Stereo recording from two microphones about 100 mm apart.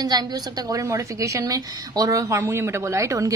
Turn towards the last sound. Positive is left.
turn(degrees=-30)  # may be behind; listen again after turning